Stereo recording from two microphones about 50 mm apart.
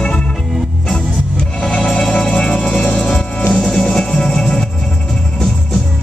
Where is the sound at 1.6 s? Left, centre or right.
Centre.